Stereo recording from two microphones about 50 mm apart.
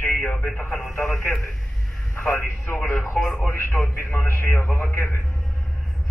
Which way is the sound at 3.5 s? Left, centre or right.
Left.